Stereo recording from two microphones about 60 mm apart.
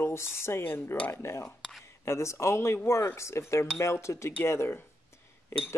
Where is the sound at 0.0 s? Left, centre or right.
Left.